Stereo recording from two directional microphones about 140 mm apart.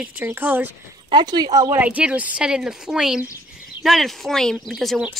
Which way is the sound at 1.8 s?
10° right (ahead or behind).